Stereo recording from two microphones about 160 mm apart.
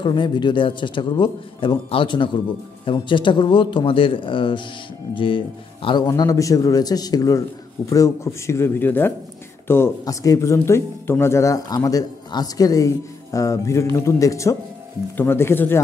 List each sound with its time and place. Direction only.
0.0 s speech: 30° left (ahead or behind)
6.0 s speech: 20° left (ahead or behind)